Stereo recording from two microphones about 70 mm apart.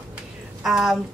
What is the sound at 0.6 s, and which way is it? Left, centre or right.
Speech, centre.